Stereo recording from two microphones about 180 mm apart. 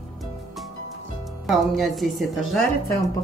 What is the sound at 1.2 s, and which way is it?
Speech, centre (ahead or behind).